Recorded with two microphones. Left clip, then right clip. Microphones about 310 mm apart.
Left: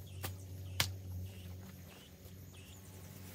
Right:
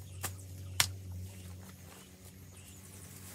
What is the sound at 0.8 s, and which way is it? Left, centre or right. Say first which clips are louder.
Music: right 5 dB; centre.